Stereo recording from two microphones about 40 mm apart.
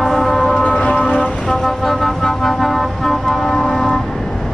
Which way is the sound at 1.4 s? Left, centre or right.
Centre.